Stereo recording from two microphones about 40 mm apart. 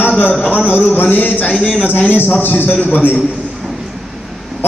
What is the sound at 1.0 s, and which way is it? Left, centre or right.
Speech, left.